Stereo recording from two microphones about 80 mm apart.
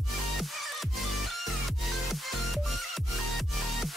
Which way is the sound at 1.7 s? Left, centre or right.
Centre.